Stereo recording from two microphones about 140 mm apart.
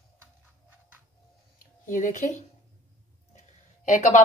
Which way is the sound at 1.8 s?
70° left (ahead or behind).